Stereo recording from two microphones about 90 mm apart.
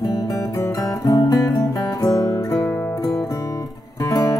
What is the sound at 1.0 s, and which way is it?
Music, 45° left (ahead or behind).